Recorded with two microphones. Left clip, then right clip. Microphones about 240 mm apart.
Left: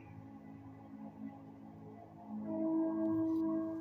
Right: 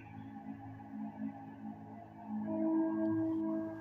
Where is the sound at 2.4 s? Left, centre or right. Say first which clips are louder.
Right 1 dB; right.